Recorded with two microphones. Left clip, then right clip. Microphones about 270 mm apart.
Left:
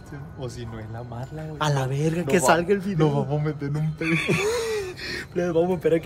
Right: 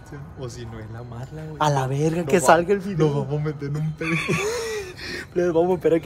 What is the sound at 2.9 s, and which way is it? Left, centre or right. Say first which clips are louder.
Speech: right 1 dB; centre.